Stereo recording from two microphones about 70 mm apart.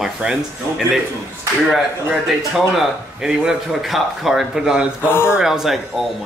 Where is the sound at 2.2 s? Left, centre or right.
Centre.